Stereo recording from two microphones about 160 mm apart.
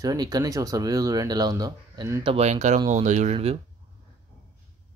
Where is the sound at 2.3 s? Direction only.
45° right (ahead or behind).